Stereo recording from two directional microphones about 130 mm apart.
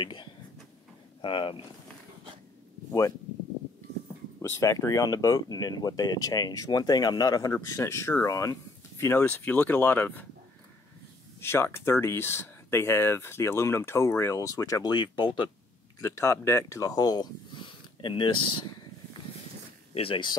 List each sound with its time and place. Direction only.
0.0 s speech: 35° left (ahead or behind)
4.4 s speech: 25° left (ahead or behind)
11.4 s speech: 20° left (ahead or behind); by 15.3 s 35° left (ahead or behind)
16.0 s speech: 20° left (ahead or behind); by 18.4 s 40° left (ahead or behind)
19.9 s speech: 45° left (ahead or behind)